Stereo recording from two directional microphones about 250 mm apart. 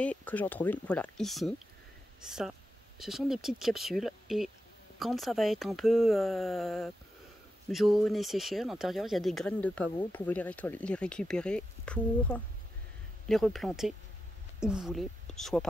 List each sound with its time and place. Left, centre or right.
0.0 s speech: centre